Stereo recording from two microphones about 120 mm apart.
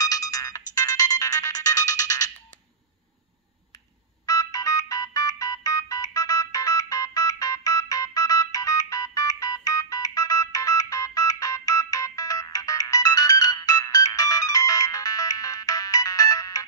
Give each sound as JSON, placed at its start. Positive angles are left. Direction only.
{"t": 0.0, "sound": "ringtone", "side_deg": 30}
{"t": 4.3, "sound": "music", "side_deg": 30}